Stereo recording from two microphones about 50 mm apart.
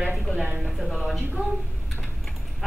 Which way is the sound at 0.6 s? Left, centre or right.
Centre.